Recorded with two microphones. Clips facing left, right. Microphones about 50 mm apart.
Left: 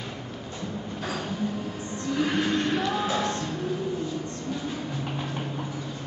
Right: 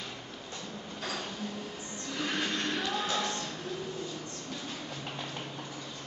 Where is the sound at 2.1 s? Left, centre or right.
Centre.